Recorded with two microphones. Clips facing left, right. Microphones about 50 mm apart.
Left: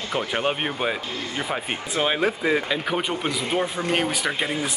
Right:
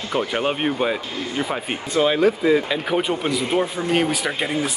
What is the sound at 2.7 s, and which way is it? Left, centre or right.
Speech, centre.